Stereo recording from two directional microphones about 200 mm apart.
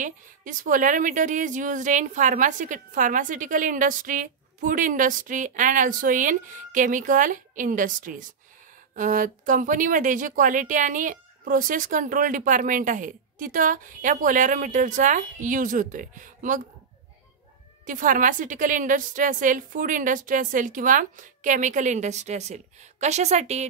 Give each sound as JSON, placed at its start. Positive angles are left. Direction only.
{"t": 0.0, "sound": "a woman's voice", "side_deg": -40}
{"t": 17.8, "sound": "a woman's voice", "side_deg": -40}